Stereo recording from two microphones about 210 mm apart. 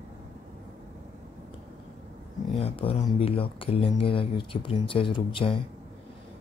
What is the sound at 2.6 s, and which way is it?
Speech, 25° left (ahead or behind).